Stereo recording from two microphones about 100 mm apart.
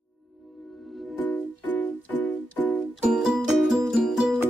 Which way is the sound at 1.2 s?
15° left (ahead or behind).